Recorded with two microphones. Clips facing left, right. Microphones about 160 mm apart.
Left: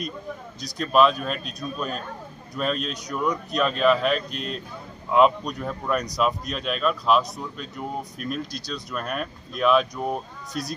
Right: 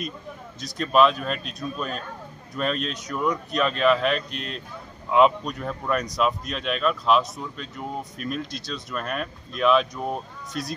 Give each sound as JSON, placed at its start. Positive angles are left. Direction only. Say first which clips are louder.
{"t": 0.6, "sound": "speech", "louder": "even", "side_deg": 0}